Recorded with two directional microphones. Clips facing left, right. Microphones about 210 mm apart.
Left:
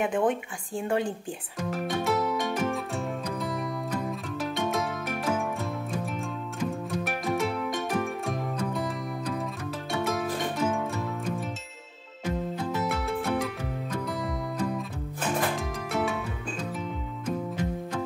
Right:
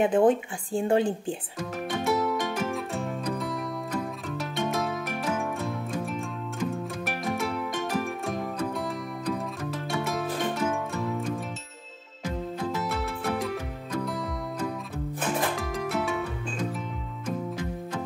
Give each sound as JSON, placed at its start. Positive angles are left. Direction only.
{"t": 0.0, "sound": "speech", "side_deg": -30}
{"t": 1.7, "sound": "music", "side_deg": 0}
{"t": 7.1, "sound": "music", "side_deg": 0}
{"t": 10.7, "sound": "music", "side_deg": 0}
{"t": 15.5, "sound": "music", "side_deg": 0}